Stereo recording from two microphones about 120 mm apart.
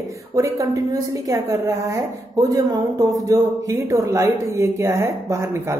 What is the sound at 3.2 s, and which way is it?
A woman's voice, 25° right (ahead or behind).